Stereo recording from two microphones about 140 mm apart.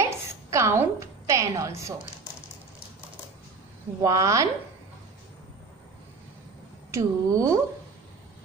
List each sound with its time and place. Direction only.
0.0 s a sound: 20° right (ahead or behind)
4.0 s speech: 25° right (ahead or behind)
6.9 s speech: 25° right (ahead or behind)